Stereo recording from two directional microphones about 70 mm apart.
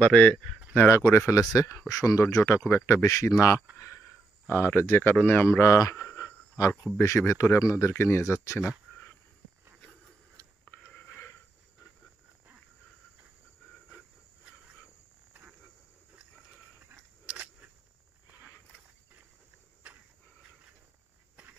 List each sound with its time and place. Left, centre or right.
0.0 s speech: centre
0.8 s speech: left
1.5 s speech: left
3.7 s a sound: left
4.5 s speech: left
17.3 s a sound: right